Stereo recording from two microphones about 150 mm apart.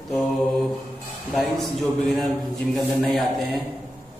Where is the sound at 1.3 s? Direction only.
Centre (ahead or behind).